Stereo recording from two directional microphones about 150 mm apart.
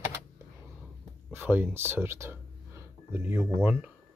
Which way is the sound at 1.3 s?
15° right (ahead or behind).